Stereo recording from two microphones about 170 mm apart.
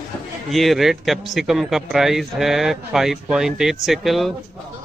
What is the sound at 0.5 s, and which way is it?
A man's voice, centre (ahead or behind).